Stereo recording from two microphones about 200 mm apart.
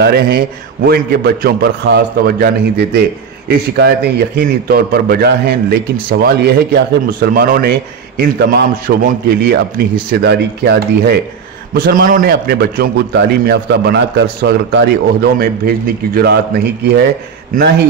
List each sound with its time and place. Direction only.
0.0 s a man's voice: 50° right (ahead or behind)